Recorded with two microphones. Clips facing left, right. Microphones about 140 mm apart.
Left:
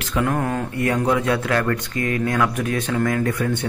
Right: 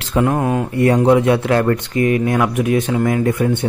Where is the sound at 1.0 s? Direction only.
25° right (ahead or behind).